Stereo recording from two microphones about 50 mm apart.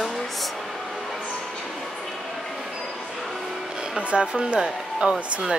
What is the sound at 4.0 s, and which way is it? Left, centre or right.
Speech, right.